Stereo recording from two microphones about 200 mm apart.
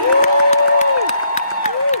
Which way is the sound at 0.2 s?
35° left (ahead or behind).